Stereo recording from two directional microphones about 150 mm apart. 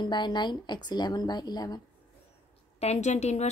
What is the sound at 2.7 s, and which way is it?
Speech, 50° left (ahead or behind).